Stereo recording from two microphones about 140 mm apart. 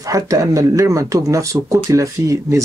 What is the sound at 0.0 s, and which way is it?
Speech, 25° right (ahead or behind).